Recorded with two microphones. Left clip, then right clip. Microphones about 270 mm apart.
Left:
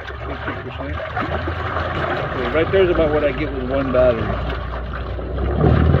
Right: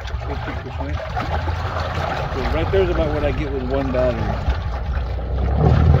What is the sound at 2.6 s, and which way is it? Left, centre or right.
Vehicle, centre.